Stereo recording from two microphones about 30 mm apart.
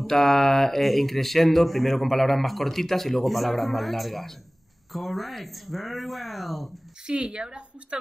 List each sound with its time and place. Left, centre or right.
0.0 s speech: centre
7.1 s a woman's voice: right